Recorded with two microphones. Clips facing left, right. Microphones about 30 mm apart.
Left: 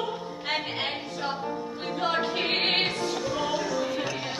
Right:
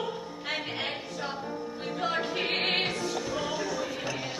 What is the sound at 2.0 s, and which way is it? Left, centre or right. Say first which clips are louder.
Music: left 3 dB; left.